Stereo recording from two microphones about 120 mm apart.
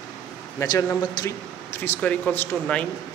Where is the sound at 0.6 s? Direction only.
25° left (ahead or behind).